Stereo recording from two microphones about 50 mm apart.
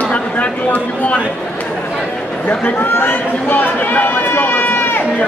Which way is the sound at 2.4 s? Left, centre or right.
Left.